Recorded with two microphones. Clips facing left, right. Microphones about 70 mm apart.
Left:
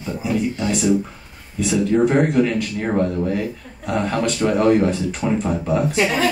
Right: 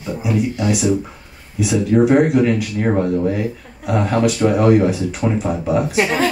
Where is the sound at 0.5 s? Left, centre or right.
Centre.